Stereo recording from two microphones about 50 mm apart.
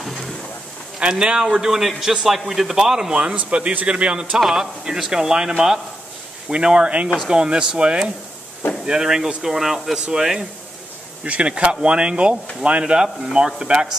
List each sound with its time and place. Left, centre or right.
0.0 s a sound: centre
0.9 s a man's voice: centre
4.4 s a man's voice: centre
6.5 s a man's voice: centre
11.2 s a man's voice: right